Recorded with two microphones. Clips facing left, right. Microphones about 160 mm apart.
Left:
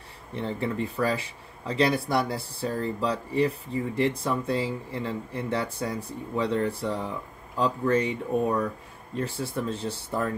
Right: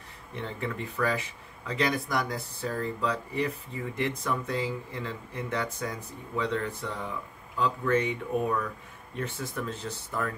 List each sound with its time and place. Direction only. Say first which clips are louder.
0.4 s speech: left 5 dB; 30° left (ahead or behind)